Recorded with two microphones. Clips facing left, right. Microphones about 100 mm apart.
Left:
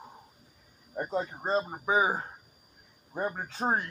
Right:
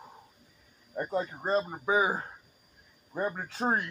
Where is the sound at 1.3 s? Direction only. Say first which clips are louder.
Right 1 dB; 30° left (ahead or behind).